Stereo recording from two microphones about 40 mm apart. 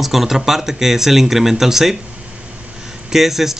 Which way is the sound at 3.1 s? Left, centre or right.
Centre.